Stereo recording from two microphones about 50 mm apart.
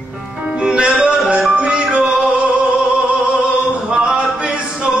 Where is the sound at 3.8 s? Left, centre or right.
Centre.